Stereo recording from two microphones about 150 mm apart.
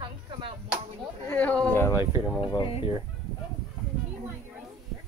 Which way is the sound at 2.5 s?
35° left (ahead or behind).